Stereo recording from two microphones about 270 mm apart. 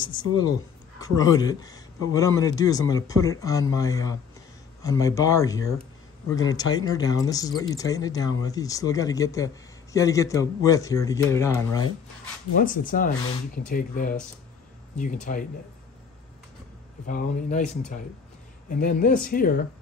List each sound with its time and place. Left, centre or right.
0.0 s speech: centre
12.5 s speech: left
15.3 s speech: left
17.0 s speech: left